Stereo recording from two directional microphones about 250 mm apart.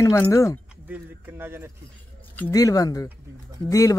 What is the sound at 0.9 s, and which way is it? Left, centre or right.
Speech, centre.